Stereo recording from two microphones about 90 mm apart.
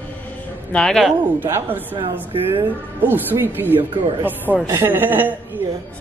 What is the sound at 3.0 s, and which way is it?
A man's voice, 25° right (ahead or behind).